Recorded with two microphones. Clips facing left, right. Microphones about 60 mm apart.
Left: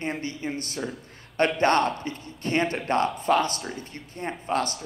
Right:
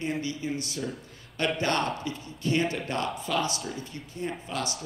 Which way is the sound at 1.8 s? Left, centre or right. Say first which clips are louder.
Left 5 dB; centre.